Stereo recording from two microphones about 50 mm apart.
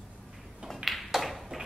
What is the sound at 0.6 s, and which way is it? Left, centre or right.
Tap, centre.